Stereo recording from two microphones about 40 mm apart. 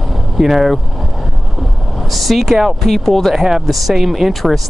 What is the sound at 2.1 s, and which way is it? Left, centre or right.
Speech, centre.